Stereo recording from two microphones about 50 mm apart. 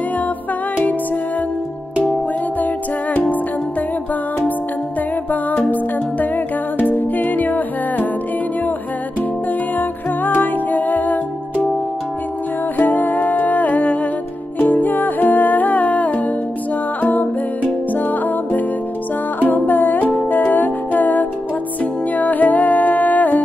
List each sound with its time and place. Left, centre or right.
2.6 s music: left
5.7 s music: left
9.8 s music: left
12.7 s music: left